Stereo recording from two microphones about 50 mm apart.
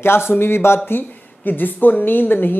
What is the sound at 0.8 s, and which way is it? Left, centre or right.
A woman's voice, left.